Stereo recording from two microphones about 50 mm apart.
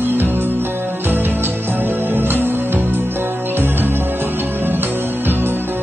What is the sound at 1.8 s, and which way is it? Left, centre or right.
Music, right.